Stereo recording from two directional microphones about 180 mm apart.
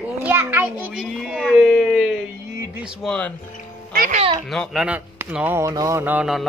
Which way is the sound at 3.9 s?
55° right (ahead or behind).